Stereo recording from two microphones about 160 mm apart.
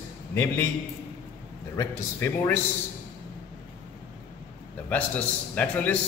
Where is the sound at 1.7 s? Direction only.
15° left (ahead or behind).